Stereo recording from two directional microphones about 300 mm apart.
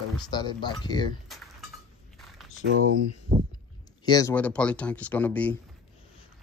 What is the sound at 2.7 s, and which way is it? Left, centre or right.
Speech, right.